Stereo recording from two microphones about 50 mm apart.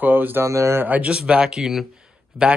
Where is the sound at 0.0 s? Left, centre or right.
Right.